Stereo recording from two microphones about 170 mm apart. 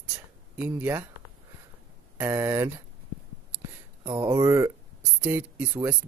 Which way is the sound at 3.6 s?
25° right (ahead or behind).